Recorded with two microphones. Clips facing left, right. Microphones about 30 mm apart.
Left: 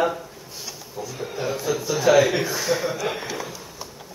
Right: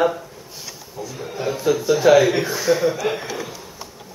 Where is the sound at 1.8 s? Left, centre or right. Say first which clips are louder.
Right 4 dB; centre.